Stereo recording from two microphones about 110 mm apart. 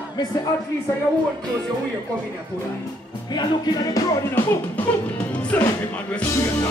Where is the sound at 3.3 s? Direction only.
40° left (ahead or behind).